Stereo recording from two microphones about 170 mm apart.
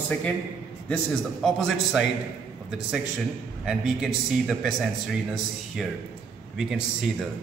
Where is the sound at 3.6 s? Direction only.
5° right (ahead or behind).